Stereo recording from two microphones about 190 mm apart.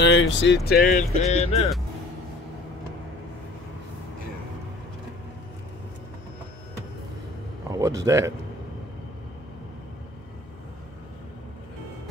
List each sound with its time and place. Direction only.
0.0 s speech: 75° left (ahead or behind); by 1.7 s 35° left (ahead or behind)
7.7 s speech: 20° right (ahead or behind)